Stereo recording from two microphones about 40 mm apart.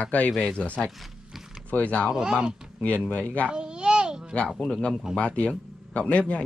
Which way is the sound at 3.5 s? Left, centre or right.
Right.